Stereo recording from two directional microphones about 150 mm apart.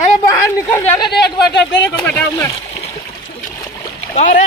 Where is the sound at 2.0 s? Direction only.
10° left (ahead or behind).